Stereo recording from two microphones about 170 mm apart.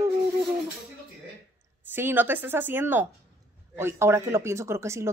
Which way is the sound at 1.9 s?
10° right (ahead or behind).